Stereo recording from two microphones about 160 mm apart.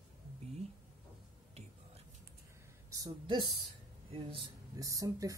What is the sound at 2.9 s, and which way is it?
Speech, 25° right (ahead or behind).